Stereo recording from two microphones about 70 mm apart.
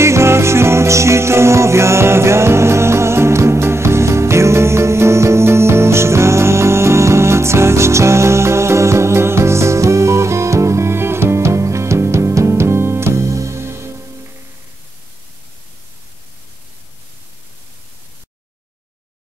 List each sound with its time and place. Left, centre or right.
0.0 s music: right